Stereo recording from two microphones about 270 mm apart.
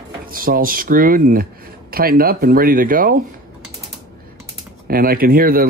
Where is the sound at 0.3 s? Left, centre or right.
Right.